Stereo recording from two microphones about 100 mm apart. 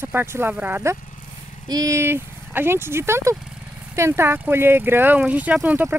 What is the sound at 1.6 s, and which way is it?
Speech, 35° right (ahead or behind).